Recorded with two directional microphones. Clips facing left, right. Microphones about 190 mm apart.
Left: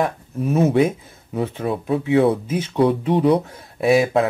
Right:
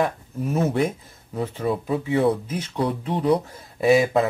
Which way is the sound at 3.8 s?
Centre (ahead or behind).